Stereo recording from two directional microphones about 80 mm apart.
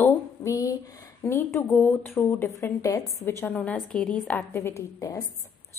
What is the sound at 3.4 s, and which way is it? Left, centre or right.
Speech, centre.